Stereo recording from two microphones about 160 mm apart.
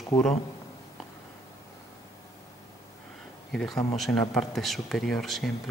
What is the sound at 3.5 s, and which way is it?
Speech, centre (ahead or behind).